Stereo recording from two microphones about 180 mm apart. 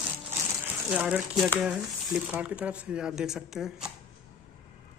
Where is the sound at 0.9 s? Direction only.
5° right (ahead or behind).